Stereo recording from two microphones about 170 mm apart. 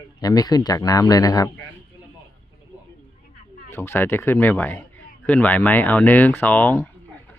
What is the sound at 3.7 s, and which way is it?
Speech, 15° left (ahead or behind).